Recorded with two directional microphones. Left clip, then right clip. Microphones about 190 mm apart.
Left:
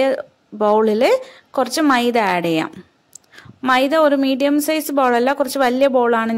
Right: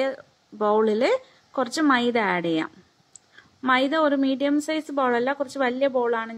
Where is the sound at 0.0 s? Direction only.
45° left (ahead or behind).